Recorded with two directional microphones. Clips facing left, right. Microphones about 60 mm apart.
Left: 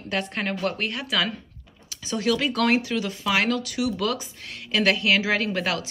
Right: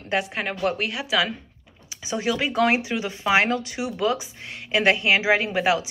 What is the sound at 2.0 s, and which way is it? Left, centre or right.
Speech, centre.